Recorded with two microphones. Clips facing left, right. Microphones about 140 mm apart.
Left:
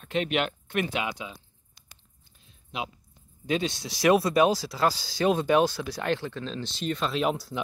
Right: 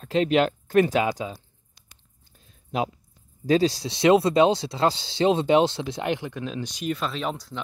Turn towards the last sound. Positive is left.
turn(degrees=5)  # may be behind; listen again after turning